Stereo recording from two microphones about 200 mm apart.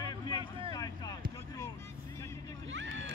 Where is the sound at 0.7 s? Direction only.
20° left (ahead or behind).